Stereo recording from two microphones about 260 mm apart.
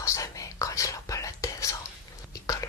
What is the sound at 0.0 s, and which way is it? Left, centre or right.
Whispering, centre.